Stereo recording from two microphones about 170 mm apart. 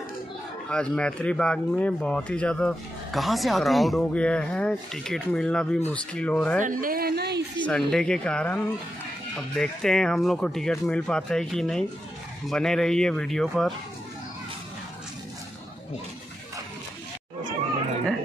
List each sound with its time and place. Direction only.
0.7 s speech: 5° left (ahead or behind)
6.6 s a woman's voice: 55° right (ahead or behind); by 7.6 s 75° right (ahead or behind)
7.9 s speech: 5° left (ahead or behind)